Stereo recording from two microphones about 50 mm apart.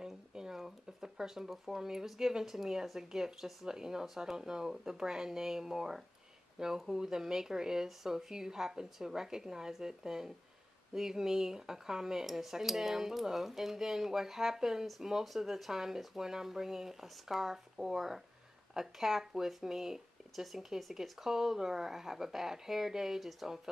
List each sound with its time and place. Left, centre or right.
0.0 s speech: centre